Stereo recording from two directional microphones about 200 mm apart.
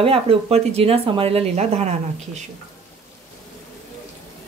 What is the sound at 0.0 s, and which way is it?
Speech, 30° right (ahead or behind).